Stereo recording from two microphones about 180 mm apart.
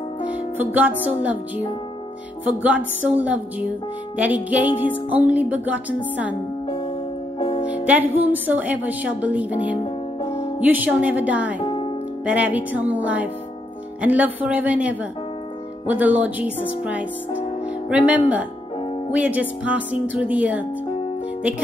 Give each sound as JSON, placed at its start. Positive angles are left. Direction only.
{"t": 0.6, "sound": "speech", "side_deg": -10}
{"t": 2.4, "sound": "speech", "side_deg": -10}
{"t": 7.3, "sound": "music", "side_deg": 30}
{"t": 7.6, "sound": "speech", "side_deg": -5}
{"t": 10.2, "sound": "music", "side_deg": 15}
{"t": 10.6, "sound": "speech", "side_deg": -10}
{"t": 11.6, "sound": "music", "side_deg": 25}
{"t": 12.3, "sound": "speech", "side_deg": -10}